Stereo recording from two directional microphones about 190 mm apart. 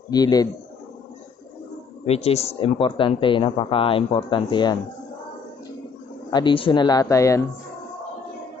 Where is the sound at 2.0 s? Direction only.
35° left (ahead or behind).